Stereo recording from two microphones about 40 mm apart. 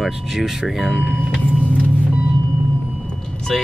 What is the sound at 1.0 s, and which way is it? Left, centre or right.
Speech, centre.